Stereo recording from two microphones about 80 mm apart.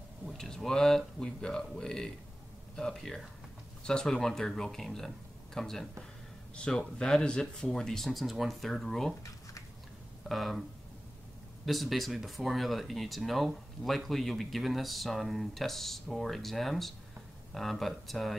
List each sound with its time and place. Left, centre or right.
0.2 s a man's voice: centre
10.2 s speech: centre
11.6 s speech: centre